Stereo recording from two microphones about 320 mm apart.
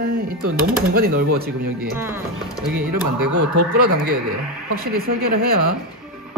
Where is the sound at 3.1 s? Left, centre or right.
Right.